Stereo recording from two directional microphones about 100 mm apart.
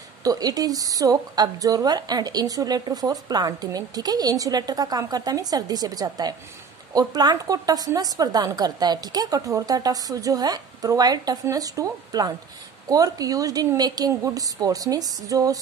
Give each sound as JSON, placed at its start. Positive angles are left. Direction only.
{"t": 0.2, "sound": "a woman's voice", "side_deg": -40}